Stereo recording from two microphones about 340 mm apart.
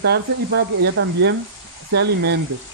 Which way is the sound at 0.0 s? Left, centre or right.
Right.